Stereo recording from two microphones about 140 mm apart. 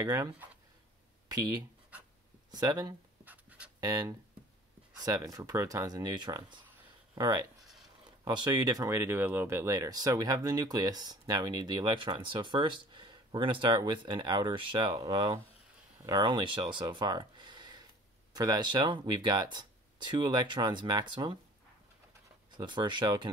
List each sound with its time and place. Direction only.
0.0 s speech: 30° right (ahead or behind)
1.3 s speech: 25° right (ahead or behind)
1.9 s writing: 10° right (ahead or behind)
2.5 s speech: 30° right (ahead or behind)
3.3 s a sound: 10° right (ahead or behind)
3.8 s speech: 25° right (ahead or behind)
7.6 s a sound: centre (ahead or behind)
8.2 s speech: 30° right (ahead or behind)
22.5 s speech: 30° right (ahead or behind)